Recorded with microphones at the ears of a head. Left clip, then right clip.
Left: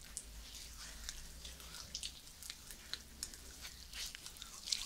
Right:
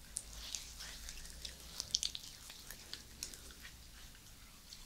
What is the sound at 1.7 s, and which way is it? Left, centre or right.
Drip, right.